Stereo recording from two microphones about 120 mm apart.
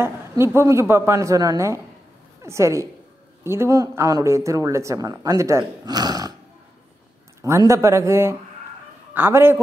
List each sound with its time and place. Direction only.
0.6 s speech: 20° right (ahead or behind)
7.4 s speech: 25° right (ahead or behind)